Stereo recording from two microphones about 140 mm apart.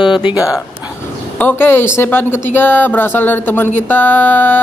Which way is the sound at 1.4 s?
15° left (ahead or behind).